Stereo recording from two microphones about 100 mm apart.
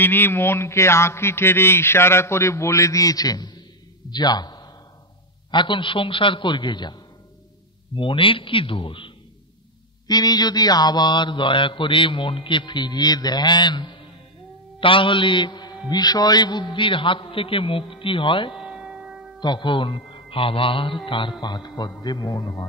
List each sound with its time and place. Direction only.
0.0 s a man's voice: 20° left (ahead or behind); by 4.6 s 45° left (ahead or behind)
5.5 s mantra: 50° left (ahead or behind)
7.9 s a man's voice: 60° left (ahead or behind)
10.0 s mantra: 40° left (ahead or behind)
14.8 s a man's voice: 60° left (ahead or behind)
18.5 s music: 5° right (ahead or behind)
19.4 s mantra: 50° left (ahead or behind)
20.1 s a man's voice: 65° left (ahead or behind); by 21.9 s 45° left (ahead or behind)
22.0 s mantra: 45° left (ahead or behind)